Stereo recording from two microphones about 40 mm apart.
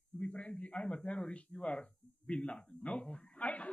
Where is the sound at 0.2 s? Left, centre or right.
Left.